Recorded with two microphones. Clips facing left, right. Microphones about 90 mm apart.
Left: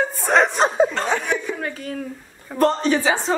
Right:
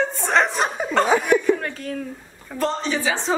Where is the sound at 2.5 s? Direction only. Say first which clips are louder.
Left 5 dB; 50° left (ahead or behind).